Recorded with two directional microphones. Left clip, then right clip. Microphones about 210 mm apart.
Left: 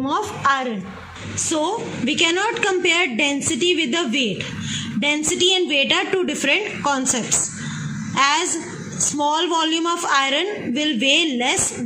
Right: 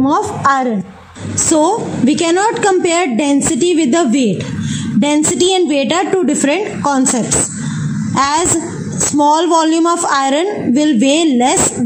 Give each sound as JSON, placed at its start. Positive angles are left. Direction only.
{"t": 0.0, "sound": "a woman's voice", "side_deg": -40}